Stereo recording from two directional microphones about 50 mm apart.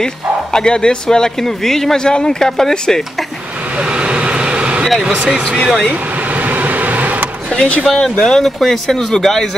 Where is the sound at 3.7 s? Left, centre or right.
Right.